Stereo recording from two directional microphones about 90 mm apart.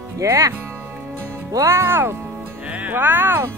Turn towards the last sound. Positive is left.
turn(degrees=-25)  # may be behind; listen again after turning